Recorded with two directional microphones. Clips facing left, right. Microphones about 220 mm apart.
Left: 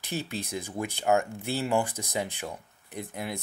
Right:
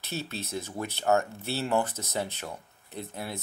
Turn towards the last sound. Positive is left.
turn(degrees=15)  # may be behind; listen again after turning